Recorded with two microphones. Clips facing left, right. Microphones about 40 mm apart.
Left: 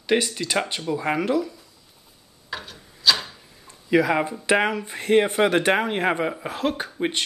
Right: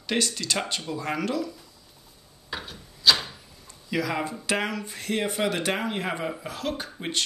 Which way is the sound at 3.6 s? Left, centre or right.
Left.